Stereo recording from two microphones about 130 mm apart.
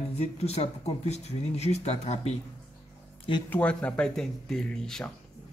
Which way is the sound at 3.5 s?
10° left (ahead or behind).